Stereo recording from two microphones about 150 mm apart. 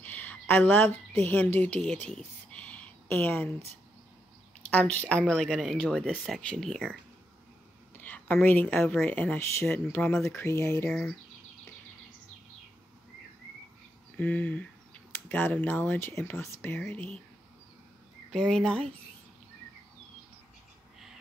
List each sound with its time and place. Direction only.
0.0 s a sound: 10° left (ahead or behind)
1.2 s a woman's voice: 10° left (ahead or behind)
2.0 s a sound: 5° left (ahead or behind)
4.6 s speech: 10° left (ahead or behind)
8.0 s a woman's voice: 10° left (ahead or behind)
10.9 s speech: 5° left (ahead or behind)
14.1 s a woman's voice: 10° left (ahead or behind)
18.3 s speech: 5° left (ahead or behind)